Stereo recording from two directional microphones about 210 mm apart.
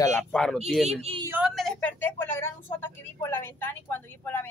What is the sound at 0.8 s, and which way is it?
Speech, 30° right (ahead or behind).